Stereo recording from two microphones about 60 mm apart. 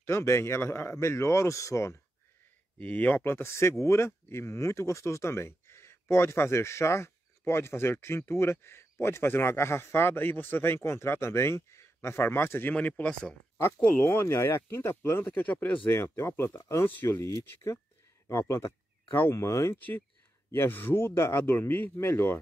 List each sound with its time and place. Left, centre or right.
0.0 s speech: left
2.8 s speech: left
12.7 s speech: left
14.0 s a man's voice: left
15.9 s speech: left
16.8 s a man's voice: left
17.2 s speech: left
20.5 s a man's voice: left
21.9 s speech: left